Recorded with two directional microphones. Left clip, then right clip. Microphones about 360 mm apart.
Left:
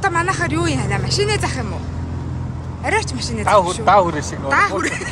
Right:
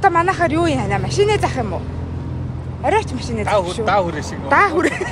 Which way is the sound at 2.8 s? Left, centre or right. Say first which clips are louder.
Right 2 dB; centre.